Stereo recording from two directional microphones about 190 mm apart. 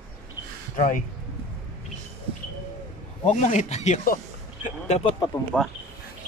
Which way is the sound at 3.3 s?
40° left (ahead or behind).